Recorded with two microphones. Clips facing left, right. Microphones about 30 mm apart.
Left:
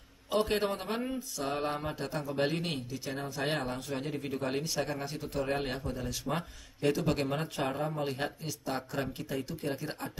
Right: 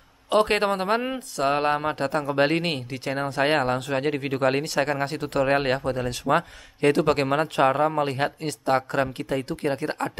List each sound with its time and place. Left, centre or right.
0.3 s speech: right